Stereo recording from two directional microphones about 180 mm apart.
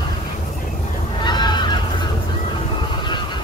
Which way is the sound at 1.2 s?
25° left (ahead or behind).